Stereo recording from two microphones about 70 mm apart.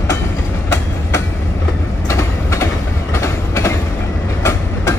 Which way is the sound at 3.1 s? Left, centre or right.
Left.